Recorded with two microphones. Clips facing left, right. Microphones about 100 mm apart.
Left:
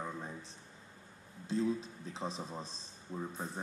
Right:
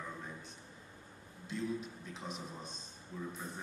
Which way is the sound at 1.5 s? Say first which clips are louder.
Left 5 dB; 30° left (ahead or behind).